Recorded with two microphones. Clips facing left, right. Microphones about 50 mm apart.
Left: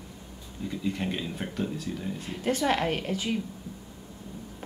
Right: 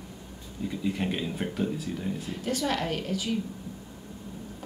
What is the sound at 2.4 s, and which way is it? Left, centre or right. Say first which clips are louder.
Speech: left 4 dB; left.